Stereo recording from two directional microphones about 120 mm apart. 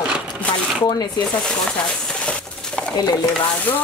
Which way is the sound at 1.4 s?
5° left (ahead or behind).